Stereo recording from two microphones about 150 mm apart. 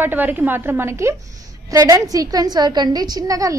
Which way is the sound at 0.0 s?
10° right (ahead or behind).